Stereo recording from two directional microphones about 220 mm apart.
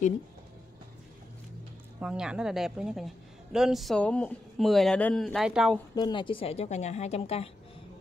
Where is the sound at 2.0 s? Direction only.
5° right (ahead or behind).